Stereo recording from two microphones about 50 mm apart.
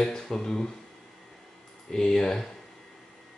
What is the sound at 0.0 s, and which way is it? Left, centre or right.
Speech, centre.